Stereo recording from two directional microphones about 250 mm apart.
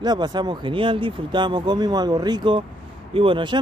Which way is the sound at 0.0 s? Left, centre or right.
Centre.